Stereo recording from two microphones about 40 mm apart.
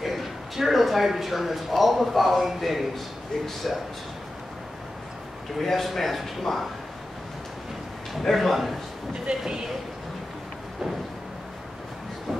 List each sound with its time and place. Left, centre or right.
0.0 s a man's voice: centre
5.6 s a man's voice: centre
8.2 s a man's voice: centre
9.3 s speech: centre